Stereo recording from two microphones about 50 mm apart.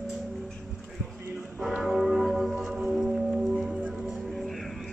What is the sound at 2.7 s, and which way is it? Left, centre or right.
Music, centre.